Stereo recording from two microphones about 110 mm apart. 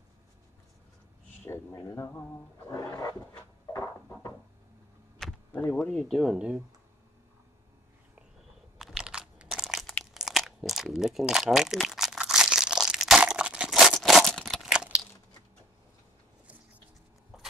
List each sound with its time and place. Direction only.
1.4 s speech: 25° left (ahead or behind)
2.7 s roaring cats: 35° left (ahead or behind)
5.5 s speech: 15° left (ahead or behind)
6.3 s speech: 10° right (ahead or behind)
8.7 s crunch: 5° right (ahead or behind)